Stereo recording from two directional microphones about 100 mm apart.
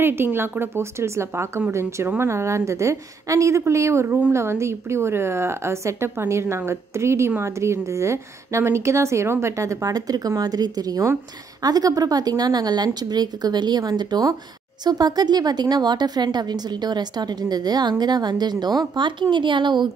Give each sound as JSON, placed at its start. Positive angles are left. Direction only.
{"t": 0.0, "sound": "a woman's voice", "side_deg": -20}